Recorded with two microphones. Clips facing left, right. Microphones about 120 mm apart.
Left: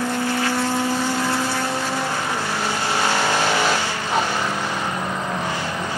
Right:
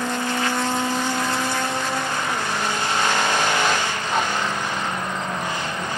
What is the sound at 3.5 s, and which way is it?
Vehicle, 10° left (ahead or behind).